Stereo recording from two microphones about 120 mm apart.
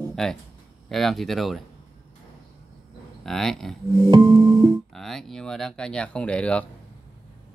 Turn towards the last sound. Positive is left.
turn(degrees=10)  # may be behind; listen again after turning